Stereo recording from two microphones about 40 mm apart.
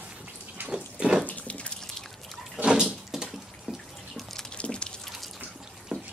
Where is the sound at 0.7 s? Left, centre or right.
Right.